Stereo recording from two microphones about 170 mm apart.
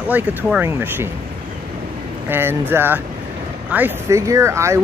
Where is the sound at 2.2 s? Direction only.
15° right (ahead or behind).